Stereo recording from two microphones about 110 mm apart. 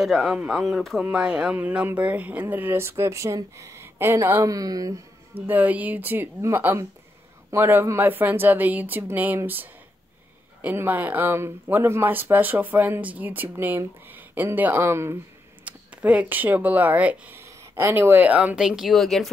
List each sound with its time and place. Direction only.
0.0 s speech: centre (ahead or behind); by 4.9 s 35° right (ahead or behind)
5.5 s speech: 15° right (ahead or behind)
15.6 s speech: 10° right (ahead or behind)
17.4 s speech: 25° right (ahead or behind); by 19.3 s 5° left (ahead or behind)